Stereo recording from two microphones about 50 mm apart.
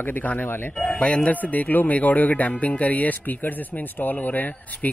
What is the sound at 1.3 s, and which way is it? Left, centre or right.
Speech, left.